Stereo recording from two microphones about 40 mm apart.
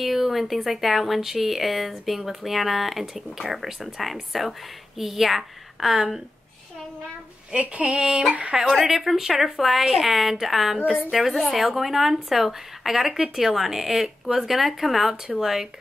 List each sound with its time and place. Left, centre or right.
0.0 s speech: centre
7.5 s a sound: right
8.5 s speech: centre
11.3 s speech: centre
11.6 s speech: centre